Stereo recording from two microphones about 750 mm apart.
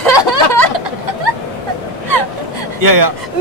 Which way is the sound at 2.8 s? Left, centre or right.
Right.